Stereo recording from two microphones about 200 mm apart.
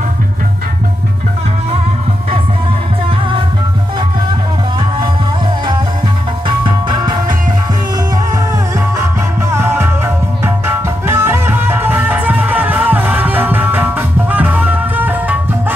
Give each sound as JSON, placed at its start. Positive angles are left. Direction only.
{"t": 6.4, "sound": "music", "side_deg": -25}
{"t": 8.7, "sound": "music", "side_deg": -15}